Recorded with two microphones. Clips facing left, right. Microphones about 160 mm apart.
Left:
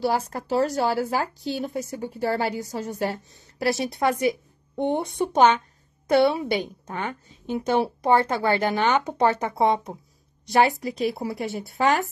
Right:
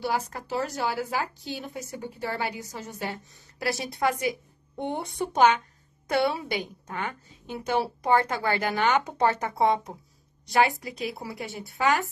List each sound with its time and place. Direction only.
0.0 s speech: 35° left (ahead or behind)
3.7 s a woman's voice: 25° left (ahead or behind)